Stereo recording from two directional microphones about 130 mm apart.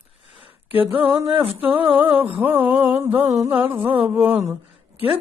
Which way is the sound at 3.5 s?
15° right (ahead or behind).